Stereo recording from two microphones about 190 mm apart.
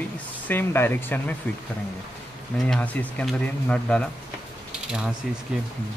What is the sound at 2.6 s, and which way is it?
Speech, 5° left (ahead or behind).